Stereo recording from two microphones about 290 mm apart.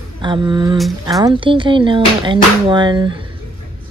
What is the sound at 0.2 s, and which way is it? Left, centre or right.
A woman's voice, centre.